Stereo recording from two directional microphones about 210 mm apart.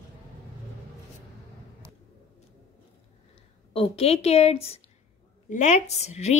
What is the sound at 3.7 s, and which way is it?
A woman's voice, 25° left (ahead or behind).